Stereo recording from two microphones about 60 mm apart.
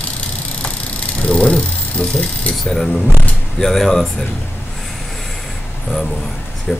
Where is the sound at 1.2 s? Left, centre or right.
Centre.